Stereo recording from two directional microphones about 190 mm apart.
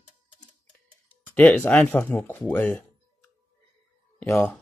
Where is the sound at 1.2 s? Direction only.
10° left (ahead or behind).